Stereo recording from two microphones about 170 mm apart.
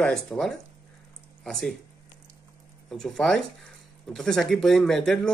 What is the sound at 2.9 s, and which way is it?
Speech, 5° left (ahead or behind).